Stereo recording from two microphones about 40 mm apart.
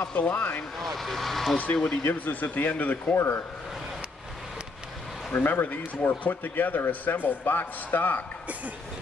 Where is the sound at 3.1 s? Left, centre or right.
Left.